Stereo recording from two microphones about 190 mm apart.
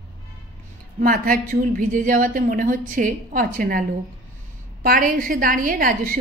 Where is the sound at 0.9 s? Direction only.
45° right (ahead or behind).